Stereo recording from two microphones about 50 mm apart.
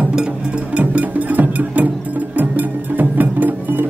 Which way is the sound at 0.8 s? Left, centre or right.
Right.